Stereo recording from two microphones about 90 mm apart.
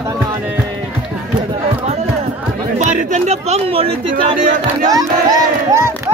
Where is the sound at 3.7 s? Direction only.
90° right.